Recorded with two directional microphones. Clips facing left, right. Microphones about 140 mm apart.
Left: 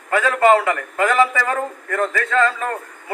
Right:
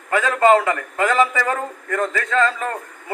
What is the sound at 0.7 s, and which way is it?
Speech, 20° right (ahead or behind).